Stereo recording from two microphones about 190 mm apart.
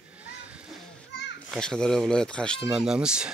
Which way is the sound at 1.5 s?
5° left (ahead or behind).